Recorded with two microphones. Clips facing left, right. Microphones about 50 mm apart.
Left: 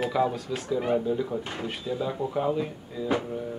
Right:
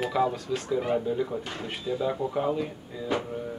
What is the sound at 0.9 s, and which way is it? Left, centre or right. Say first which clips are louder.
Speech: left 1 dB; centre.